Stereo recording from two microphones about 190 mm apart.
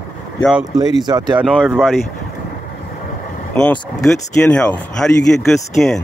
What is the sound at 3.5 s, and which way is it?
Speech, 5° left (ahead or behind).